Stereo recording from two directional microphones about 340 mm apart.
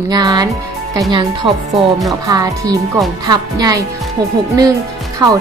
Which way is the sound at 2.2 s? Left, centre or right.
Centre.